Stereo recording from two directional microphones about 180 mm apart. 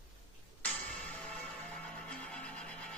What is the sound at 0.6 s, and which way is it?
Music, 5° left (ahead or behind).